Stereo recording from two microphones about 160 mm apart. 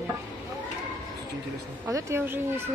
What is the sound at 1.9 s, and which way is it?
Speech, 20° right (ahead or behind).